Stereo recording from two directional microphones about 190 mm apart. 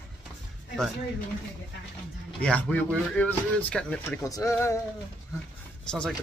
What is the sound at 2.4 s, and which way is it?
Speech, 5° left (ahead or behind).